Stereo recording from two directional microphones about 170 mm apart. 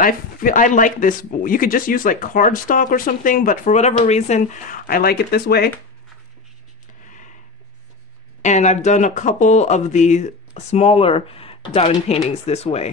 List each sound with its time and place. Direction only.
0.0 s speech: 55° left (ahead or behind)
7.1 s a sound: 50° left (ahead or behind)
8.4 s speech: 45° left (ahead or behind)